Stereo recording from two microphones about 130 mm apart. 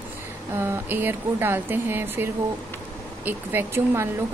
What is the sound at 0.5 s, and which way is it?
Speech, 20° right (ahead or behind).